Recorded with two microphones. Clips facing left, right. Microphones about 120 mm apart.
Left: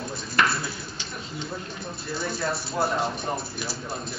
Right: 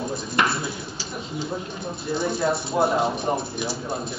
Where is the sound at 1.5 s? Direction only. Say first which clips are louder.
Right 5 dB; 20° right (ahead or behind).